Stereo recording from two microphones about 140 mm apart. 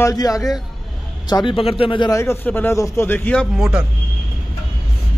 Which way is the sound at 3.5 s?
5° right (ahead or behind).